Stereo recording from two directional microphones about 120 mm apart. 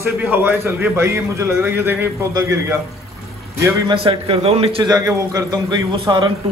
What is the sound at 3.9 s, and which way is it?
Speech, 50° right (ahead or behind).